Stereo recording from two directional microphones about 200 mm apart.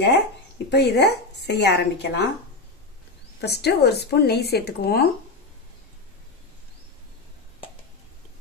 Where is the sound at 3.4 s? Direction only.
55° left (ahead or behind).